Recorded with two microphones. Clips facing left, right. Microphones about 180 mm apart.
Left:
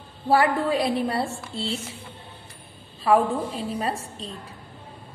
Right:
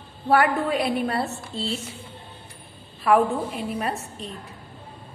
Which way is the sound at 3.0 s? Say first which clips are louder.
Right 1 dB; 30° left (ahead or behind).